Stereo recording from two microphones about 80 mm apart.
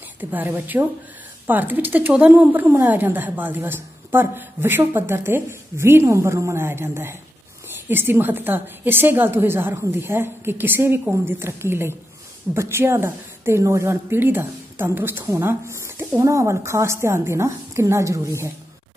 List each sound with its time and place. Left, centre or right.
0.2 s a woman's voice: right